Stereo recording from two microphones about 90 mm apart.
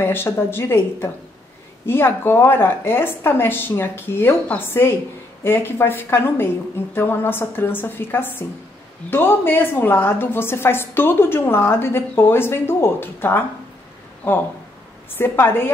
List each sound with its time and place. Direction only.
0.0 s a woman's voice: 25° left (ahead or behind)